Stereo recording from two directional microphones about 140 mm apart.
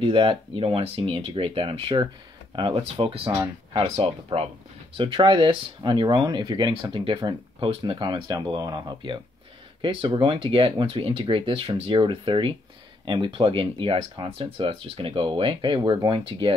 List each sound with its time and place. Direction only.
0.0 s speech: 40° right (ahead or behind)